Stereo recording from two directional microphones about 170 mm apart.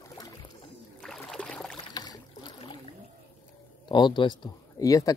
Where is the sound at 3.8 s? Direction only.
25° left (ahead or behind).